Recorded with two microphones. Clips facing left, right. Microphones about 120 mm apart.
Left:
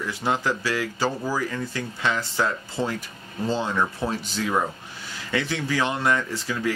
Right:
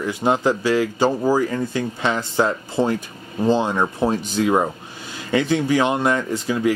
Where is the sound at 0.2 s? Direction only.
25° right (ahead or behind).